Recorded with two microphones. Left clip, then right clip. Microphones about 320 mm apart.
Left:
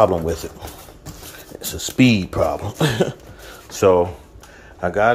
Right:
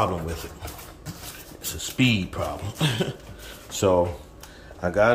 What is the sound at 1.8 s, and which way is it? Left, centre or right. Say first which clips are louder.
A man's voice: left 6 dB; centre.